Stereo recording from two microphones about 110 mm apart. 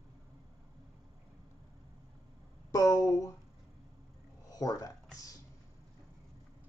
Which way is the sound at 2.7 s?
35° left (ahead or behind).